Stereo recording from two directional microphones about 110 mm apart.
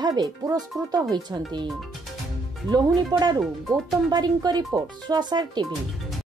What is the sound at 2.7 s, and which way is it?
Speech, 40° right (ahead or behind).